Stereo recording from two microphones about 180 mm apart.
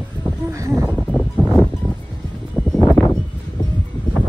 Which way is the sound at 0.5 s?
15° right (ahead or behind).